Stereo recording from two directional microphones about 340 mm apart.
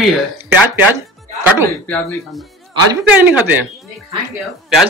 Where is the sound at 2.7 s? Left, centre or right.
Centre.